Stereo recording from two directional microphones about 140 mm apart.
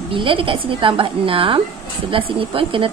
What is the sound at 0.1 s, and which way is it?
A woman's voice, 40° right (ahead or behind).